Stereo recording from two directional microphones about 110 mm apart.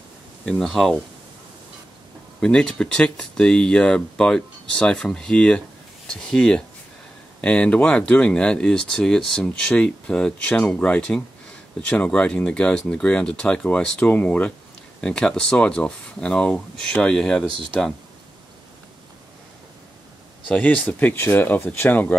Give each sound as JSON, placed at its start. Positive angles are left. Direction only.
{"t": 0.5, "sound": "speech", "side_deg": 5}
{"t": 2.4, "sound": "speech", "side_deg": 10}
{"t": 20.4, "sound": "speech", "side_deg": 10}